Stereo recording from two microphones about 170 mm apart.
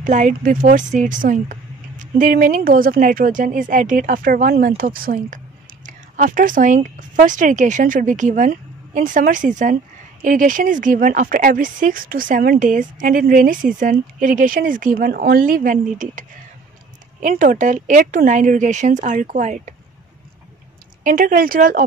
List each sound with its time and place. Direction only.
0.0 s speech: 45° right (ahead or behind)
21.0 s speech: 55° right (ahead or behind)